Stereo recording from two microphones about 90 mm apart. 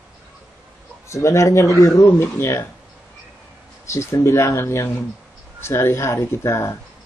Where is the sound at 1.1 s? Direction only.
35° left (ahead or behind).